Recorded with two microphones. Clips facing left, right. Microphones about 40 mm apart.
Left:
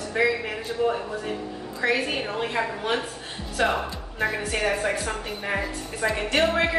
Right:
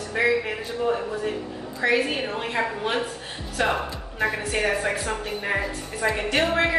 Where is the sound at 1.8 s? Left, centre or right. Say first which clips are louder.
Right 2 dB; centre.